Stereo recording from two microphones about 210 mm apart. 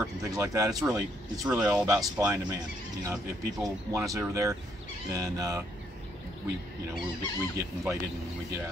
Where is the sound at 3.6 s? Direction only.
15° right (ahead or behind).